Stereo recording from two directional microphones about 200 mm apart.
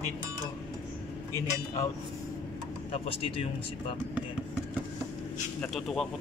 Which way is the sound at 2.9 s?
30° left (ahead or behind).